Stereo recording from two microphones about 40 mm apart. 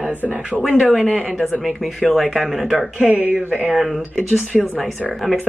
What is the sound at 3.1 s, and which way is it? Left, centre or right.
Speech, right.